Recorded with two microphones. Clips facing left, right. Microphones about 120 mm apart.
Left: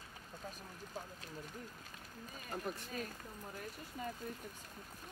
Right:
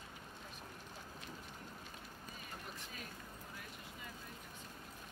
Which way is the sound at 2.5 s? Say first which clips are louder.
Left 12 dB; 40° left (ahead or behind).